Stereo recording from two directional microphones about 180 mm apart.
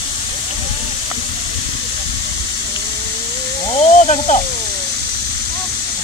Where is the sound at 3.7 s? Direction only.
35° left (ahead or behind).